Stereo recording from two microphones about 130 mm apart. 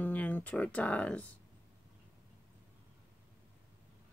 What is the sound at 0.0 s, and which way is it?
Speech, 15° left (ahead or behind).